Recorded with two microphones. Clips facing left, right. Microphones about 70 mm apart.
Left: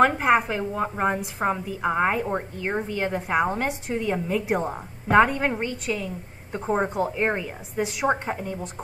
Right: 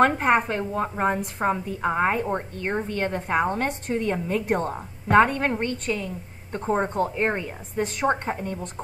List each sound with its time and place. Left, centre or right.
0.0 s a woman's voice: centre